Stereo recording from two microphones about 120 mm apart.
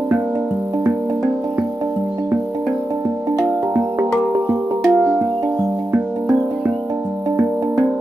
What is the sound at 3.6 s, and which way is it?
Music, 20° right (ahead or behind).